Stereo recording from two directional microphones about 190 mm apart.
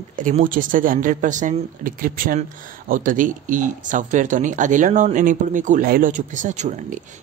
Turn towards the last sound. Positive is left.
turn(degrees=-40)  # may be behind; listen again after turning